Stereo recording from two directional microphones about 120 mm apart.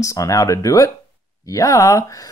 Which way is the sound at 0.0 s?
25° left (ahead or behind).